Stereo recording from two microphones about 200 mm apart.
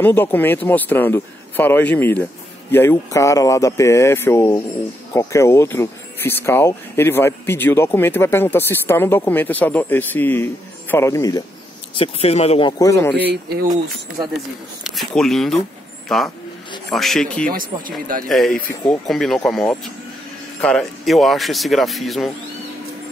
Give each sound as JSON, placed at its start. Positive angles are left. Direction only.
{"t": 0.0, "sound": "speech", "side_deg": 10}
{"t": 12.0, "sound": "speech", "side_deg": 30}
{"t": 14.8, "sound": "speech", "side_deg": 0}
{"t": 17.5, "sound": "speech", "side_deg": -45}
{"t": 18.3, "sound": "speech", "side_deg": 0}